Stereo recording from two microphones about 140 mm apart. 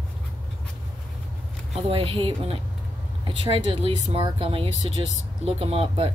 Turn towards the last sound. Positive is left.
turn(degrees=-45)  # may be behind; listen again after turning